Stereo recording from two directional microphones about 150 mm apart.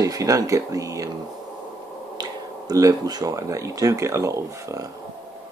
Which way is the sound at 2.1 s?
25° right (ahead or behind).